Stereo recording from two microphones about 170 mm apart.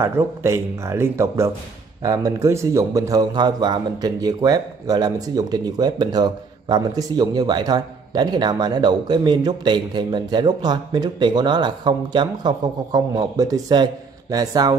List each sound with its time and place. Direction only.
0.0 s a man's voice: 15° right (ahead or behind)